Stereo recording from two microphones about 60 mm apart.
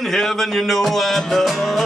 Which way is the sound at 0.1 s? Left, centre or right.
Centre.